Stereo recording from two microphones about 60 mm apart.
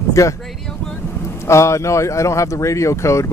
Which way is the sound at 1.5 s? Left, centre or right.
Left.